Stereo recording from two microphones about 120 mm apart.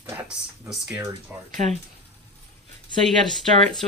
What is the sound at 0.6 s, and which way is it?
Speech, 5° right (ahead or behind).